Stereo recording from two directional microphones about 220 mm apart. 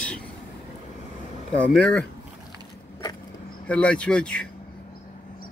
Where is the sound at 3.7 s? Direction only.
5° left (ahead or behind).